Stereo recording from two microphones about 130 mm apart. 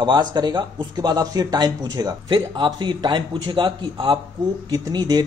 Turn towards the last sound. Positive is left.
turn(degrees=-30)  # may be behind; listen again after turning